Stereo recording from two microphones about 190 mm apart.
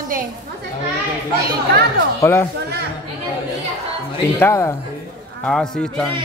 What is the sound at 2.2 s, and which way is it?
Speech, 15° left (ahead or behind).